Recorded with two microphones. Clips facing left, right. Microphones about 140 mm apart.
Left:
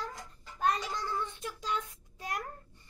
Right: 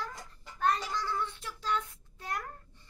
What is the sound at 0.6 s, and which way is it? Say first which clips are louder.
A child's voice: right 1 dB; 20° left (ahead or behind).